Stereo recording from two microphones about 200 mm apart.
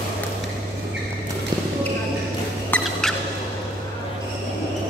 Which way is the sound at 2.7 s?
10° left (ahead or behind).